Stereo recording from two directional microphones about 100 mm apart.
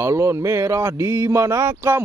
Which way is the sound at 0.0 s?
30° right (ahead or behind).